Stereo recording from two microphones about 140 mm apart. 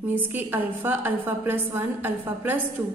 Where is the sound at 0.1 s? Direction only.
15° right (ahead or behind).